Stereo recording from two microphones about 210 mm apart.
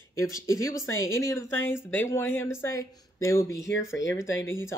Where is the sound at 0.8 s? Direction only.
70° left (ahead or behind).